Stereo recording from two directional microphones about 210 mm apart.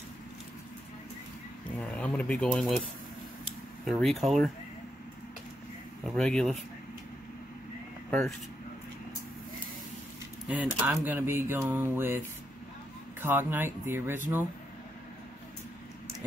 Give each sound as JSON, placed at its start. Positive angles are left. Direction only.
{"t": 1.8, "sound": "speech", "side_deg": 5}
{"t": 3.8, "sound": "speech", "side_deg": 0}
{"t": 6.0, "sound": "speech", "side_deg": 5}
{"t": 10.5, "sound": "speech", "side_deg": -10}
{"t": 13.2, "sound": "speech", "side_deg": -10}